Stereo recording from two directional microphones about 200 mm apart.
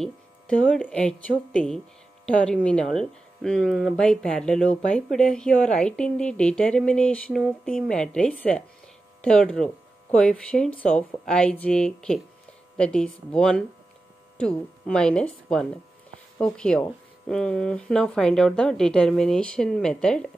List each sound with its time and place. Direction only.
0.0 s speech: 5° left (ahead or behind)